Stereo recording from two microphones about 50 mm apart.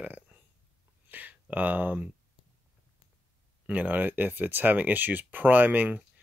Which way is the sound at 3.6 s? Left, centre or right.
Right.